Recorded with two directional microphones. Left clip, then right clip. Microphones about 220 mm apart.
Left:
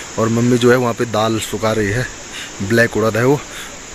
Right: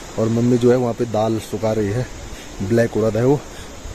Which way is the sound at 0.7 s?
15° left (ahead or behind).